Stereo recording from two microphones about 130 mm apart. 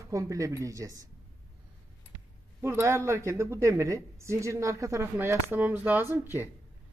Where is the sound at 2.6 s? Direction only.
20° right (ahead or behind).